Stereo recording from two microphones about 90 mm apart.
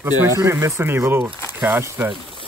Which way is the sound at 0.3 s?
30° right (ahead or behind).